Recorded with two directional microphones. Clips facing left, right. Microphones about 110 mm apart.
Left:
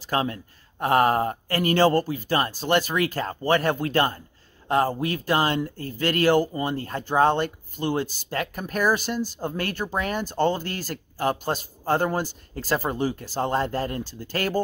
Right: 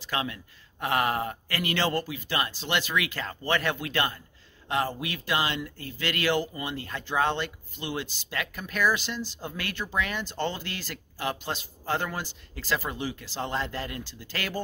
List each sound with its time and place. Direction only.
0.0 s speech: 40° left (ahead or behind)